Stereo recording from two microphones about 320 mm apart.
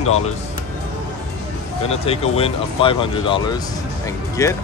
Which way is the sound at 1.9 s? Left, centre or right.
Centre.